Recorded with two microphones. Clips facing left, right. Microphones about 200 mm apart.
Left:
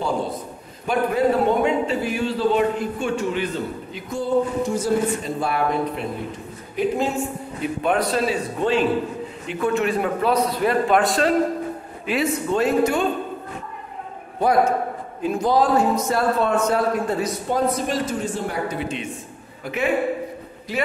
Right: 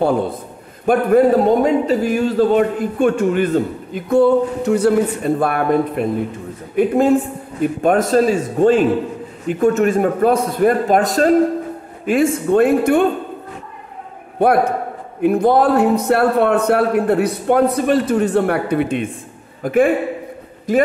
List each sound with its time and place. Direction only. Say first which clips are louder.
0.0 s a man's voice: right 7 dB; 55° right (ahead or behind)
1.4 s a man's voice: right 5 dB; 40° right (ahead or behind); by 13.1 s 55° right (ahead or behind)
14.4 s a man's voice: right 4 dB; 60° right (ahead or behind); by 20.8 s 45° right (ahead or behind)